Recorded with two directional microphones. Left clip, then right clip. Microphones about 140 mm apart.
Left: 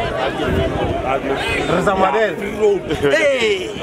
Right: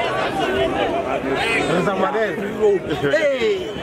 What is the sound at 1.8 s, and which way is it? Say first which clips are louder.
A man's voice: left 4 dB; 40° left (ahead or behind).